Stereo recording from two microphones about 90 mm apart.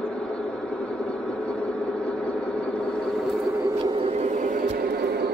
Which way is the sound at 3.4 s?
35° right (ahead or behind).